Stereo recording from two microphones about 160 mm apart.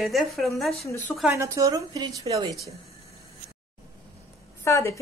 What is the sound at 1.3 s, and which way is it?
A woman's voice, 20° right (ahead or behind).